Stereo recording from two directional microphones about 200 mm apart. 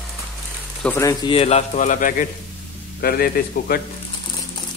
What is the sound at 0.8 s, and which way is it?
A man's voice, 15° left (ahead or behind).